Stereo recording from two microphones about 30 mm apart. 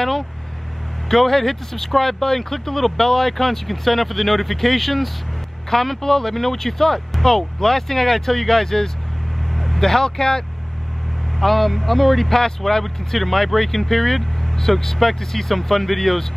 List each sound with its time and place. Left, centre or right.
1.1 s speech: centre
11.3 s speech: centre
12.4 s speech: centre